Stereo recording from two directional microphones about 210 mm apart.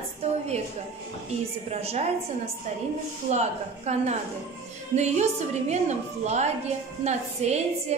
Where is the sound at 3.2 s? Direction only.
30° right (ahead or behind).